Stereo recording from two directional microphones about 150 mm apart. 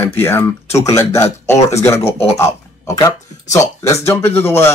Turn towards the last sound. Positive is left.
turn(degrees=15)  # may be behind; listen again after turning